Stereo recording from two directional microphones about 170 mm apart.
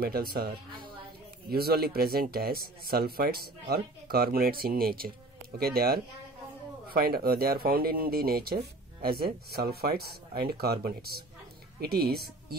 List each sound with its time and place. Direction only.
0.0 s speech: 60° right (ahead or behind)
1.5 s speech: 65° right (ahead or behind)